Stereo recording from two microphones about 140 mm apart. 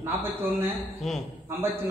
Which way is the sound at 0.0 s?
15° right (ahead or behind).